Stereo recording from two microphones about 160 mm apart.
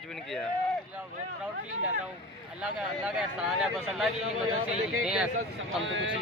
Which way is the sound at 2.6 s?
5° right (ahead or behind).